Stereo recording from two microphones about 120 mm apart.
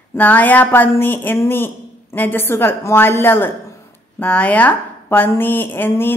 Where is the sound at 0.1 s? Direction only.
15° left (ahead or behind).